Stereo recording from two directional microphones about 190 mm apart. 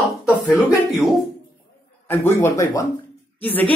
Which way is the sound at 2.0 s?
15° left (ahead or behind).